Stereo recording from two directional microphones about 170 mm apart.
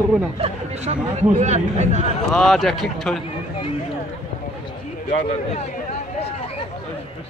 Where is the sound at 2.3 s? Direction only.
Centre (ahead or behind).